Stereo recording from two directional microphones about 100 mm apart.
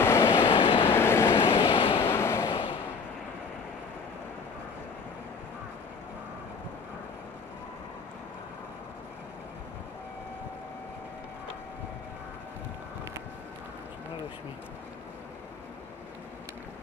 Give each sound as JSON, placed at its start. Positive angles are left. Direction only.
{"t": 0.0, "sound": "vehicle", "side_deg": 25}
{"t": 1.6, "sound": "vehicle", "side_deg": 70}
{"t": 1.9, "sound": "a sound", "side_deg": 25}